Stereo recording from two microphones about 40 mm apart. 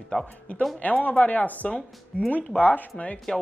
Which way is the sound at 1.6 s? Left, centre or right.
Left.